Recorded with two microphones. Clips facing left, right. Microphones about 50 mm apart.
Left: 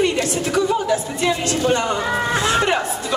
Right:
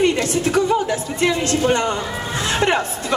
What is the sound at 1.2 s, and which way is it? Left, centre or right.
A woman's voice, right.